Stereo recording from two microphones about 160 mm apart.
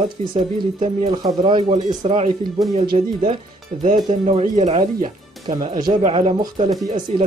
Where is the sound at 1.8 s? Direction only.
40° right (ahead or behind).